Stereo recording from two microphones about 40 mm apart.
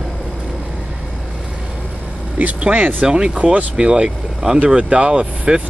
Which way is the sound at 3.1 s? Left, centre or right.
Right.